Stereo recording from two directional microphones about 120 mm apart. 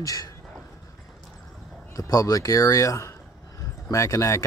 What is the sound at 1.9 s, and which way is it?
Speech, 30° left (ahead or behind).